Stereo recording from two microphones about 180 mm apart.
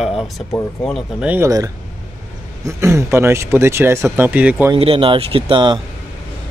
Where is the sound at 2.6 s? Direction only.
15° right (ahead or behind).